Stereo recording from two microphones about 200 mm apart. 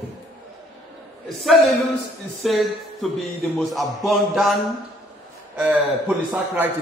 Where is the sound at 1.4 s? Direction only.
Centre (ahead or behind).